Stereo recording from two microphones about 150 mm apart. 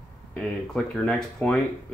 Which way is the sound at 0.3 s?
5° left (ahead or behind).